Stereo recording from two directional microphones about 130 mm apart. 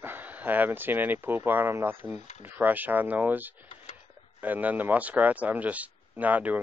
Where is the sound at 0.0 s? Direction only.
15° right (ahead or behind).